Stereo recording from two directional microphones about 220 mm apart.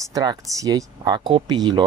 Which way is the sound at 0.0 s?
15° right (ahead or behind).